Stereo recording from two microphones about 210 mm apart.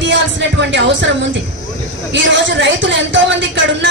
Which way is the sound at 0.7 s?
60° right (ahead or behind).